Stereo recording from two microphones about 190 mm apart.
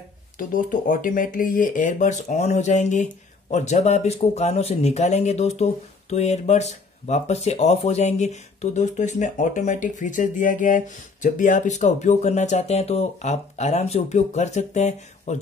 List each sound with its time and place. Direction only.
0.4 s speech: 45° left (ahead or behind)